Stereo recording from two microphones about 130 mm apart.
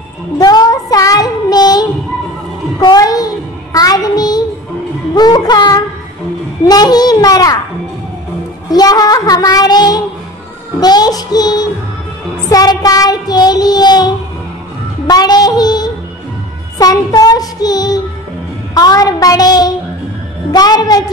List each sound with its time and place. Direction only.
0.4 s child singing: 30° left (ahead or behind)
8.6 s child singing: 30° left (ahead or behind)
15.0 s yodeling: 30° left (ahead or behind)
16.7 s child singing: 30° left (ahead or behind)